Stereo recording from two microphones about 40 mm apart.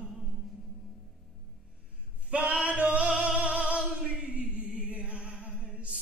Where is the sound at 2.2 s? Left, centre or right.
Right.